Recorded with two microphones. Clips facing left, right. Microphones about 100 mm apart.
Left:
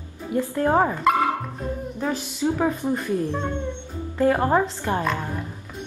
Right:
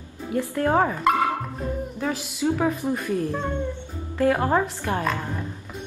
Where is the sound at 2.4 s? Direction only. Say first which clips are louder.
Even; 10° left (ahead or behind).